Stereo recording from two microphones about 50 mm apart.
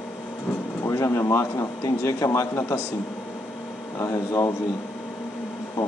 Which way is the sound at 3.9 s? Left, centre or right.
Left.